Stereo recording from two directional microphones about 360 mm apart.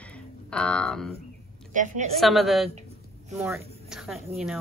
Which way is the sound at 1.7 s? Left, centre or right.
Right.